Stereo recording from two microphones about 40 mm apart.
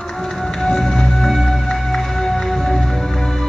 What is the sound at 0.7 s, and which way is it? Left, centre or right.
Music, centre.